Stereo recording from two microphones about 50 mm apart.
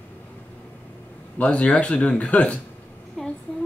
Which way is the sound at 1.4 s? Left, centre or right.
Left.